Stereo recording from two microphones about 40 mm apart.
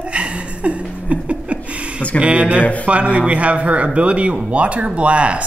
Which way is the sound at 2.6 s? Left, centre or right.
Left.